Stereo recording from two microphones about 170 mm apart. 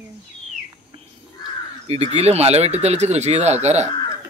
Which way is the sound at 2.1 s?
40° right (ahead or behind).